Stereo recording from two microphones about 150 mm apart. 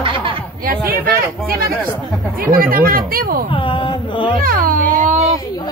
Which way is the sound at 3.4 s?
35° left (ahead or behind).